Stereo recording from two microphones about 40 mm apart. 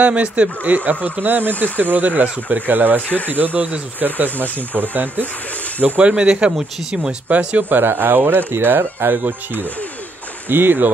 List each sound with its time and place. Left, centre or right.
0.0 s speech: right
0.7 s speech: right
4.0 s speech: right
4.9 s speech: right
5.9 s speech: right
7.2 s speech: right
7.8 s speech: right
9.2 s speech: right